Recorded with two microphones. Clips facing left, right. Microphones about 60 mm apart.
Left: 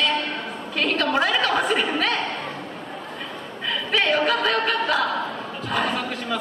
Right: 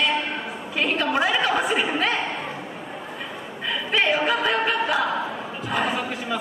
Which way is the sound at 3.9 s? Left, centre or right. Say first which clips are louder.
Left 1 dB; centre.